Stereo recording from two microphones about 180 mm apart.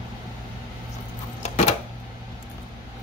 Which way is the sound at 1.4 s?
40° left (ahead or behind).